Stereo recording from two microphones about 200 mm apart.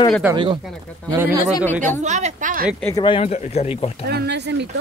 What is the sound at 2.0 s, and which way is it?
Speech, 35° right (ahead or behind).